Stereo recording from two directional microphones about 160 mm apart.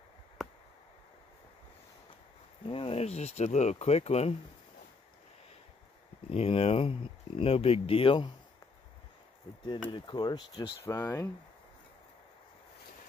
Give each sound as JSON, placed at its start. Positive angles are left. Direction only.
{"t": 0.4, "sound": "a sound", "side_deg": 0}
{"t": 2.7, "sound": "speech", "side_deg": 35}
{"t": 6.3, "sound": "speech", "side_deg": 35}
{"t": 9.8, "sound": "speech", "side_deg": 30}
{"t": 10.9, "sound": "speech", "side_deg": 15}